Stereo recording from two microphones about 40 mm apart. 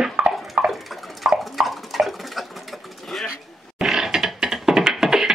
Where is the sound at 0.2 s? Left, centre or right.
Right.